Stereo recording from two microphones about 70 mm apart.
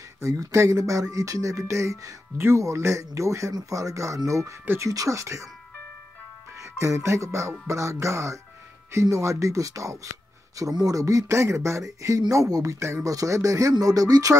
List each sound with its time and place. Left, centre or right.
0.2 s speech: right
6.6 s speech: right
12.4 s speech: right
12.7 s speech: right